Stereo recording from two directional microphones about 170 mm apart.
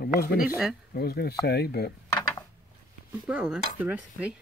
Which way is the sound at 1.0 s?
70° left (ahead or behind).